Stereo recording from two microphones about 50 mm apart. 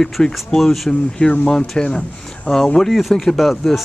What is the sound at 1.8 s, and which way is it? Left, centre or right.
Speech, centre.